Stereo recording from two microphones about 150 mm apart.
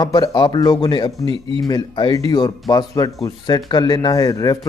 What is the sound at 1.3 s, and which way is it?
Speech, 35° right (ahead or behind).